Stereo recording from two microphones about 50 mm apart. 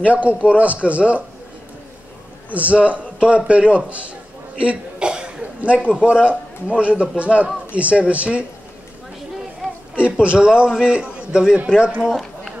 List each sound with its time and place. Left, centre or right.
0.0 s a man's voice: right
2.5 s a man's voice: right
10.1 s a man's voice: centre